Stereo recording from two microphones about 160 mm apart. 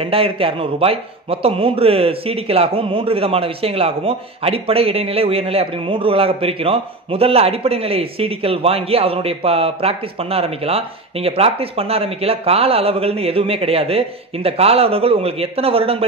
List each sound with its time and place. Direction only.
0.0 s a man's voice: 35° right (ahead or behind)